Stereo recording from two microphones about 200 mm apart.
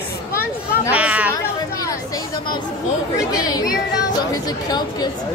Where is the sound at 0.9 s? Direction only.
5° right (ahead or behind).